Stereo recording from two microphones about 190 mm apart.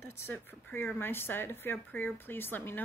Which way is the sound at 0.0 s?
15° left (ahead or behind).